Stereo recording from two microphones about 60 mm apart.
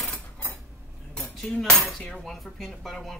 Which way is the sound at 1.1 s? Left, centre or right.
Centre.